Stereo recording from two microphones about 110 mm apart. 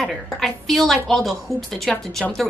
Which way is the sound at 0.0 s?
Centre (ahead or behind).